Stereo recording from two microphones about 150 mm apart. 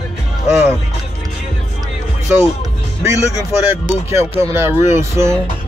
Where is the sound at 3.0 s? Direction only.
20° right (ahead or behind).